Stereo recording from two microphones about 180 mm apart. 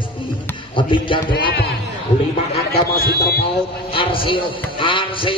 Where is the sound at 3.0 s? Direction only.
60° left (ahead or behind).